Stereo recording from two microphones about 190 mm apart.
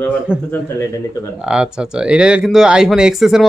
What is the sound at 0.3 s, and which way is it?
Speech, 5° right (ahead or behind).